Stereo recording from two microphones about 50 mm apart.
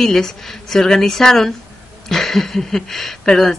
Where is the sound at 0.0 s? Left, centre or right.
Centre.